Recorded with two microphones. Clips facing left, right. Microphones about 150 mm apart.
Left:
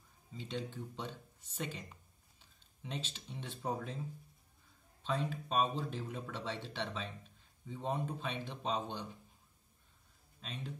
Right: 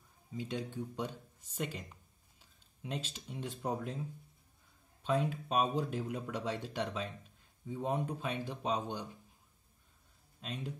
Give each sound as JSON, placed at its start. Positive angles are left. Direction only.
{"t": 0.4, "sound": "speech", "side_deg": -10}
{"t": 5.0, "sound": "speech", "side_deg": -10}
{"t": 10.4, "sound": "speech", "side_deg": -10}